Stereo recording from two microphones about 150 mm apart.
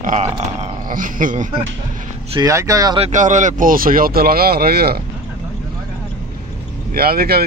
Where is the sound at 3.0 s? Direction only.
55° right (ahead or behind); by 4.9 s 90° right.